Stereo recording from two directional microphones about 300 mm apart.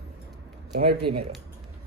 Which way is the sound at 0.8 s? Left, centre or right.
Right.